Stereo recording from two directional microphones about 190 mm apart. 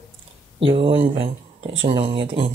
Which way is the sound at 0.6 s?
30° right (ahead or behind).